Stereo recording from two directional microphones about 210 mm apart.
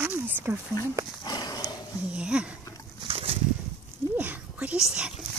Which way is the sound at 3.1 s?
25° right (ahead or behind).